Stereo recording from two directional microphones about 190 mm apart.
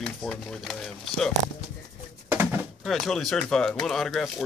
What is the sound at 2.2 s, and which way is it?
Bird, 10° right (ahead or behind).